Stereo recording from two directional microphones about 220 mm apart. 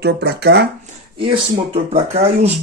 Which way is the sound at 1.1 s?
25° right (ahead or behind).